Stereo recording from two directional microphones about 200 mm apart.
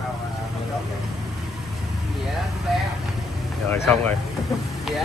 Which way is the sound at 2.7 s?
Centre (ahead or behind).